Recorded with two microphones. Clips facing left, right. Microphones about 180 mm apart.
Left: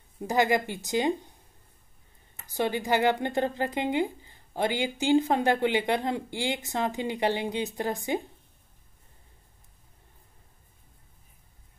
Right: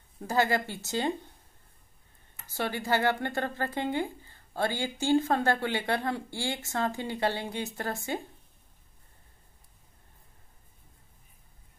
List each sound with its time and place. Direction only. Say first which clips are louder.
0.2 s speech: left 3 dB; 15° left (ahead or behind)
2.3 s speech: left 5 dB; 15° left (ahead or behind)